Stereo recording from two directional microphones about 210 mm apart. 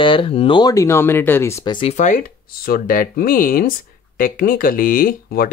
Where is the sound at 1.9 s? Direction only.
35° left (ahead or behind).